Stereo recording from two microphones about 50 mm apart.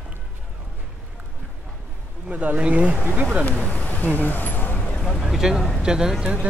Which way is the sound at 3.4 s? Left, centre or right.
Left.